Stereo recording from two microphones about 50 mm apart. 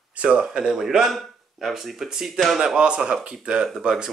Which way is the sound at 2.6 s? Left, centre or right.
Centre.